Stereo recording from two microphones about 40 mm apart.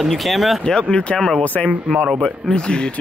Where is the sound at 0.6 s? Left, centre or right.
Centre.